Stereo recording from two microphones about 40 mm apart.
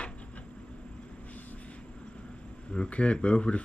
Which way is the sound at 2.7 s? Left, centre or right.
Left.